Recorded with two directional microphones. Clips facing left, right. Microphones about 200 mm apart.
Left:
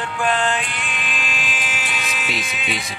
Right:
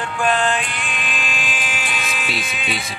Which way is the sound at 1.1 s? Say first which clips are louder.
Right 1 dB; 50° right (ahead or behind).